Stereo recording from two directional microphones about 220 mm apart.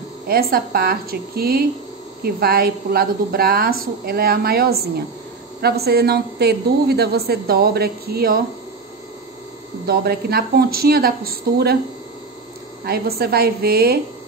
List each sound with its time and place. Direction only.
0.3 s a woman's voice: 45° right (ahead or behind)
9.8 s a woman's voice: 45° right (ahead or behind)
12.8 s a woman's voice: 45° right (ahead or behind)